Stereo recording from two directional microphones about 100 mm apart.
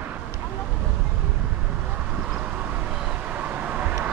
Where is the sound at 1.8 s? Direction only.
10° right (ahead or behind).